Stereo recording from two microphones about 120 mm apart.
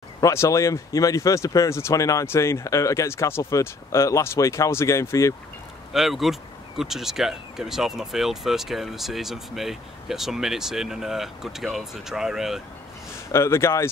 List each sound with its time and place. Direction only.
0.2 s speech: 25° left (ahead or behind)
5.9 s speech: centre (ahead or behind)
13.3 s speech: 20° left (ahead or behind)